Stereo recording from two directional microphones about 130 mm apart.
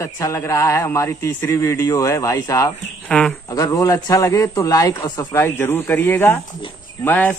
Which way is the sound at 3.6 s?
25° left (ahead or behind).